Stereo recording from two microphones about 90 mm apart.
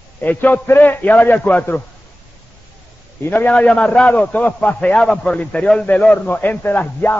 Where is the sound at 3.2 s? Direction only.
20° left (ahead or behind).